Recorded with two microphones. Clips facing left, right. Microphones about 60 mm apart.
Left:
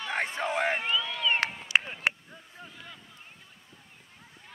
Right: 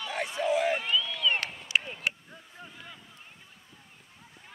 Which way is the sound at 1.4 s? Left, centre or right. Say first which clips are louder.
Left 3 dB; left.